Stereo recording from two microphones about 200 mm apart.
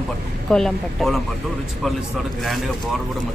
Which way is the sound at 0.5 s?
Centre (ahead or behind).